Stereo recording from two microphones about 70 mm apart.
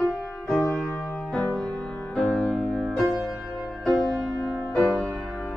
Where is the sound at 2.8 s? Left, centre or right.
Centre.